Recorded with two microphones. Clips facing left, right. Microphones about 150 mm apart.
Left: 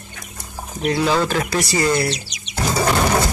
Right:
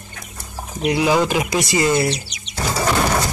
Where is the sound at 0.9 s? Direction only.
15° right (ahead or behind).